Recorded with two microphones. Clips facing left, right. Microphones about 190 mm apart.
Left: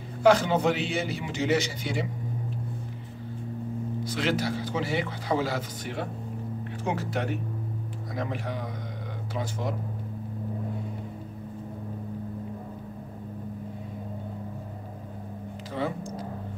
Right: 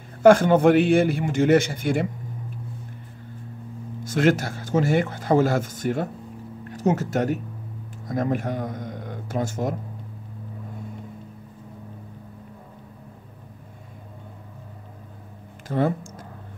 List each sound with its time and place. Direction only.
0.2 s speech: 50° right (ahead or behind)
4.0 s speech: 50° right (ahead or behind)
15.7 s speech: 50° right (ahead or behind)